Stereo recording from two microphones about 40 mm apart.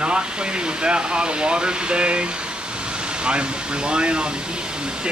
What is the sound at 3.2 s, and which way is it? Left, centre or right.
Speech, right.